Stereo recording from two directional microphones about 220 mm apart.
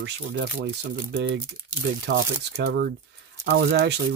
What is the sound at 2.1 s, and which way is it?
Speech, 50° right (ahead or behind).